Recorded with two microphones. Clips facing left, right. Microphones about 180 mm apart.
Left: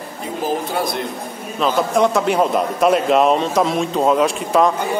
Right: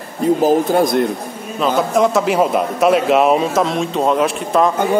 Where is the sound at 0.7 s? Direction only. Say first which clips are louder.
Right 8 dB; 45° right (ahead or behind).